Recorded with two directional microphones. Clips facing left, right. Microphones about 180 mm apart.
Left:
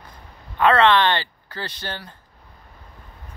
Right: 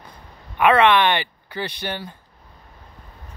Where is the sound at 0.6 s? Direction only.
15° right (ahead or behind).